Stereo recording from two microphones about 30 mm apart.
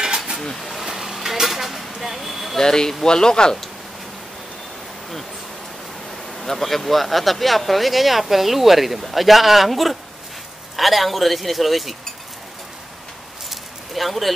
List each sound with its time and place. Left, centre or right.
0.6 s vehicle: centre
0.8 s vehicle: centre
2.6 s speech: left
6.4 s speech: centre
13.5 s a sound: centre